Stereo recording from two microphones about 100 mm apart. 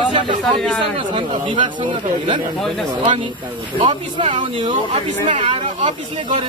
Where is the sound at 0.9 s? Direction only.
55° right (ahead or behind).